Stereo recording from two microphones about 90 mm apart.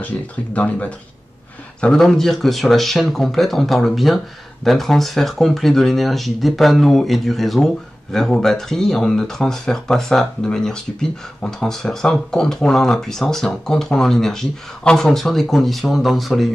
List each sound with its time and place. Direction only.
0.0 s speech: 15° left (ahead or behind)
1.8 s speech: 5° left (ahead or behind)